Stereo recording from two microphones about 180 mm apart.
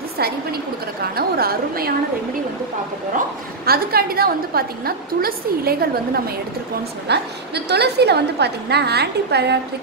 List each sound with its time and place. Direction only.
0.2 s a woman's voice: 60° right (ahead or behind)
3.6 s a woman's voice: 55° right (ahead or behind)